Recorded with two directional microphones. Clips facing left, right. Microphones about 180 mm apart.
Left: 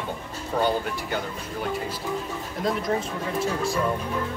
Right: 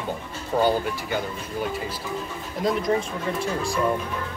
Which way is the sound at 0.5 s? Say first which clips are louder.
Right 3 dB; 20° right (ahead or behind).